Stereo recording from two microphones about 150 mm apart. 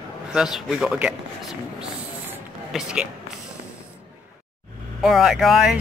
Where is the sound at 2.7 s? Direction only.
5° right (ahead or behind).